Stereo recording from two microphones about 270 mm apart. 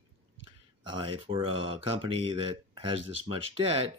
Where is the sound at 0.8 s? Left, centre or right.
Centre.